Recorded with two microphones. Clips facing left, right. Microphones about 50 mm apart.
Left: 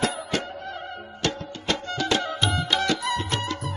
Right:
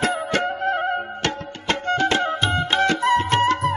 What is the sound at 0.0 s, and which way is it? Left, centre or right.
Music, right.